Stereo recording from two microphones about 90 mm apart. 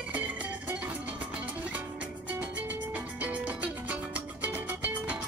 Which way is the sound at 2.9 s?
15° right (ahead or behind).